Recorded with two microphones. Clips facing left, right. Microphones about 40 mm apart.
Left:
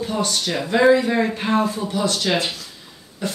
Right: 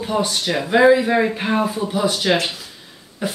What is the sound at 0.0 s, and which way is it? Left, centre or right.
Speech, centre.